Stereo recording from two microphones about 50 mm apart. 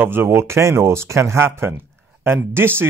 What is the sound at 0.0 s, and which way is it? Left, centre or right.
Speech, right.